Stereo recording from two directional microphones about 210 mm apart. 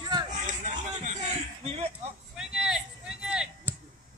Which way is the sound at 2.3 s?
Centre (ahead or behind).